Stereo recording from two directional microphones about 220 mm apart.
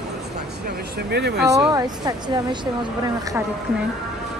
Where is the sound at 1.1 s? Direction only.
50° right (ahead or behind).